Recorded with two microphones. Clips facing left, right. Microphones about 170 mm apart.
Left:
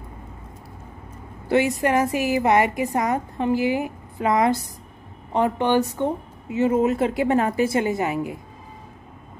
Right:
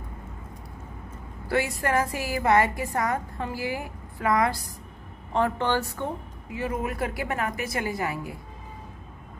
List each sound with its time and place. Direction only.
1.5 s a woman's voice: 20° left (ahead or behind)